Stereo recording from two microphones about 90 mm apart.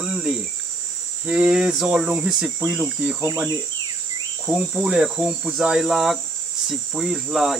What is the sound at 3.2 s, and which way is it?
Insect, 25° right (ahead or behind).